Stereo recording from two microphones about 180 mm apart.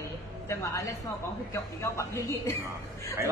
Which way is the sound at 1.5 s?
15° left (ahead or behind).